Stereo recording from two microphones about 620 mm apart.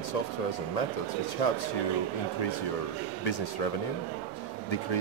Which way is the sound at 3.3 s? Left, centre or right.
Left.